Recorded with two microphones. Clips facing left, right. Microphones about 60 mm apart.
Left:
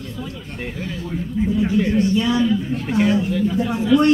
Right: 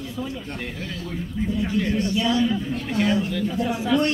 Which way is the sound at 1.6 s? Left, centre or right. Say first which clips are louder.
Left 5 dB; centre.